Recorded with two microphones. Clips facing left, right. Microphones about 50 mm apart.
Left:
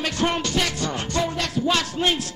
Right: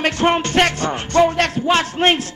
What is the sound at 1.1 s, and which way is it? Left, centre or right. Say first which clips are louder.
Music: right 11 dB; right.